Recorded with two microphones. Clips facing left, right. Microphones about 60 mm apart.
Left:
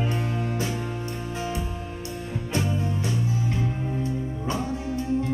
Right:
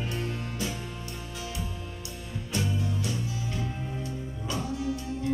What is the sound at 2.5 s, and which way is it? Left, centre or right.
Music, left.